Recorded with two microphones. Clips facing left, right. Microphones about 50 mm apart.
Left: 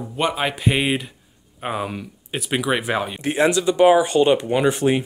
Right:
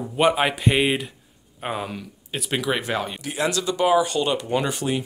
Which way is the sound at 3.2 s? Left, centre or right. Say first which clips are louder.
Left 7 dB; left.